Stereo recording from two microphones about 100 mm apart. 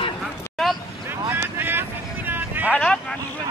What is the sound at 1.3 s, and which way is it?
Vehicle, 25° right (ahead or behind).